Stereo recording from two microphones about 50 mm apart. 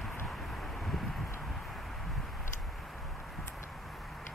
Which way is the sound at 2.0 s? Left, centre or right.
Centre.